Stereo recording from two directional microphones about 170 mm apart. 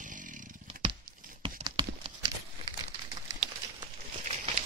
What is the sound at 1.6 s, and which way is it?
Clip-clop, 25° right (ahead or behind).